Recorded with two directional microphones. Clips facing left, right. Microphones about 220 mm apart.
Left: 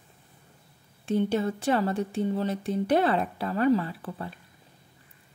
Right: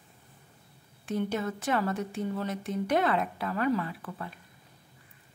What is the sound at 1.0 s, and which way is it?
Speech, 30° left (ahead or behind).